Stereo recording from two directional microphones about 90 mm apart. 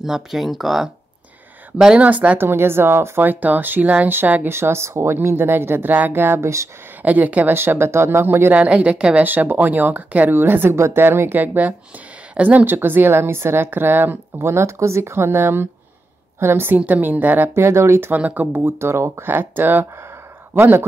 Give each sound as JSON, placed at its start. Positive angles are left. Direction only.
{"t": 0.0, "sound": "speech", "side_deg": -5}
{"t": 7.0, "sound": "speech", "side_deg": -15}
{"t": 9.3, "sound": "speech", "side_deg": -20}